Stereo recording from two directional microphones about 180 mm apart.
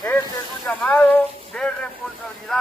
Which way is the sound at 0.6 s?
5° left (ahead or behind).